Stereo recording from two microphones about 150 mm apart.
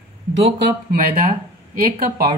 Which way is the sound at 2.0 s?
75° right (ahead or behind).